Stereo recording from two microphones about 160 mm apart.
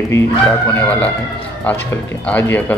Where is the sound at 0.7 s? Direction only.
10° left (ahead or behind).